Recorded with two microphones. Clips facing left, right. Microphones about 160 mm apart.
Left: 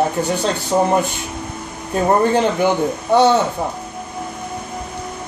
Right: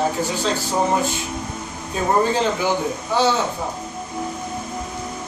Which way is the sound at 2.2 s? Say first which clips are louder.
Left 4 dB; 60° left (ahead or behind).